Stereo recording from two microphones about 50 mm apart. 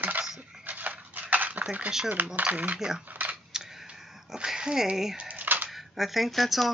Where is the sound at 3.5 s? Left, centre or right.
Centre.